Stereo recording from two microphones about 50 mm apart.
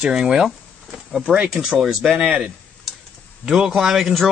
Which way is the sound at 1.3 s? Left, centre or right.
Centre.